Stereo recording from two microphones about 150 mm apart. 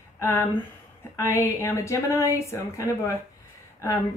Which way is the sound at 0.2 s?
15° left (ahead or behind).